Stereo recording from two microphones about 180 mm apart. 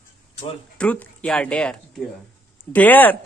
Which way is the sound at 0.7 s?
5° left (ahead or behind).